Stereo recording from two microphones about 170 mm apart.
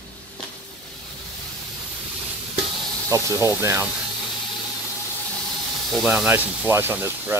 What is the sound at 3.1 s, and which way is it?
Speech, 15° right (ahead or behind).